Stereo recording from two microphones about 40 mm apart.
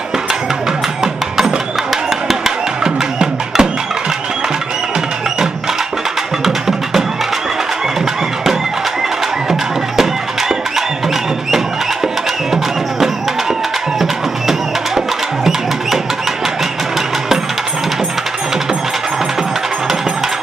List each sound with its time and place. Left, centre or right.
1.0 s music: centre
2.0 s a sound: centre
2.8 s music: centre
6.4 s music: centre
15.0 s music: centre